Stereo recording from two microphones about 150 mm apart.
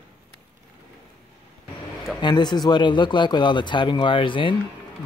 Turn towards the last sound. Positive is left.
turn(degrees=35)  # may be behind; listen again after turning